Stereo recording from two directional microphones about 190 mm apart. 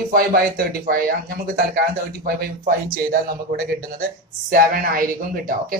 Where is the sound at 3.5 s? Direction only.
50° right (ahead or behind).